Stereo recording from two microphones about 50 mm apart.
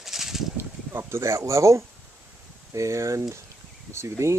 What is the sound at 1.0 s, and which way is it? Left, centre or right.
Speech, right.